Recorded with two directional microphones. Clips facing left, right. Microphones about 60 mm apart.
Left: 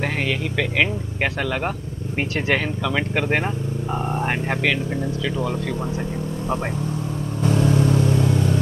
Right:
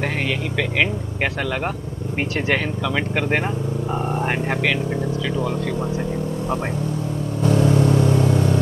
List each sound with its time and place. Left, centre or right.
0.0 s speech: centre
7.4 s vehicle: right